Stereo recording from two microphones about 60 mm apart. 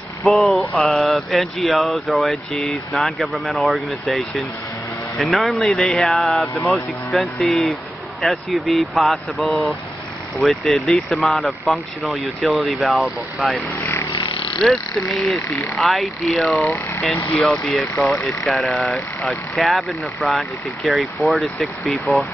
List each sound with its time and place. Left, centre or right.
0.2 s speech: centre
14.7 s speech: centre
16.5 s speech: left
17.4 s speech: centre
19.5 s speech: centre